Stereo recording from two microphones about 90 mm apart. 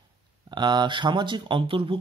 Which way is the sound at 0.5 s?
55° right (ahead or behind).